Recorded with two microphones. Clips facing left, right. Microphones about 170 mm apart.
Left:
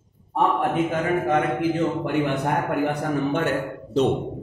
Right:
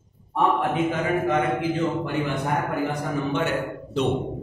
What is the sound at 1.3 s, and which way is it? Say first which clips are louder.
A man's voice: left 1 dB; 55° left (ahead or behind).